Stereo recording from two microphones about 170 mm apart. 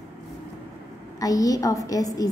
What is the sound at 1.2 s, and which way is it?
A woman's voice, 20° left (ahead or behind).